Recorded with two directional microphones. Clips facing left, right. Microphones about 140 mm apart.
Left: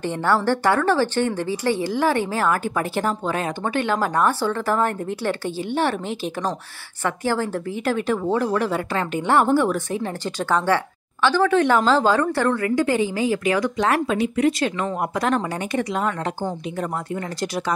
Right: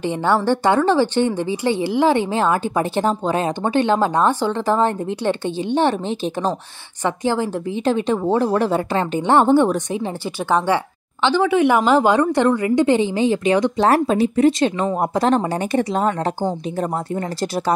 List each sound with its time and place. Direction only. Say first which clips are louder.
0.0 s a woman's voice: right 2 dB; 15° right (ahead or behind); by 17.7 s 35° right (ahead or behind)